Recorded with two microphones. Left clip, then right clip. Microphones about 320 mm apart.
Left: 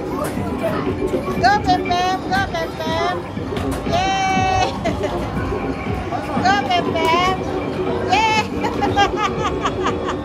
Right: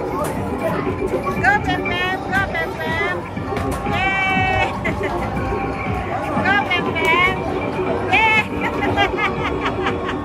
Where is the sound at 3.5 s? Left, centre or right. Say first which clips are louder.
Left 1 dB; centre.